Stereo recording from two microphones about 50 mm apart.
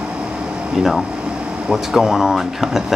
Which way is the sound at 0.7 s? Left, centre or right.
Centre.